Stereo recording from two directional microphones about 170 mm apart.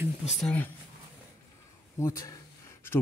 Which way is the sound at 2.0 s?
15° left (ahead or behind).